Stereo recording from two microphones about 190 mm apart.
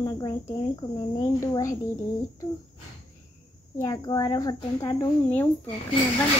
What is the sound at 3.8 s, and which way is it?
Speech, 20° left (ahead or behind).